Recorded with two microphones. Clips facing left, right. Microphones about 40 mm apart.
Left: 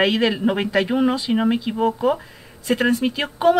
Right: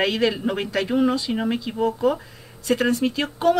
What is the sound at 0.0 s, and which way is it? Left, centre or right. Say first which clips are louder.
Speech: left 3 dB; centre.